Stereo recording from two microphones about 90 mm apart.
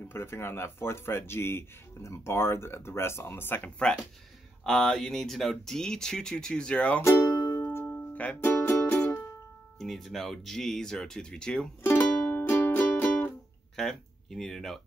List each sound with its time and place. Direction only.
0.1 s speech: 25° left (ahead or behind)
4.6 s speech: 5° left (ahead or behind)
7.0 s speech: 25° left (ahead or behind)
7.4 s music: 30° left (ahead or behind)
9.8 s speech: 5° left (ahead or behind)
11.8 s music: 20° left (ahead or behind)
13.7 s speech: 5° left (ahead or behind)